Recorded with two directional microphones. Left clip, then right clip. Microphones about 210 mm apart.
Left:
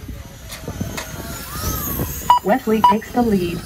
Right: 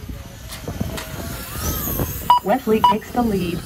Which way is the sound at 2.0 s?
25° left (ahead or behind).